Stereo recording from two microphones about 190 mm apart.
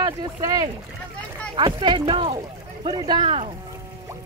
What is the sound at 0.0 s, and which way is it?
Speech, 20° right (ahead or behind).